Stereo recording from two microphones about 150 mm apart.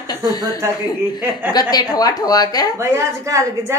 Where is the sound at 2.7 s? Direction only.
20° right (ahead or behind).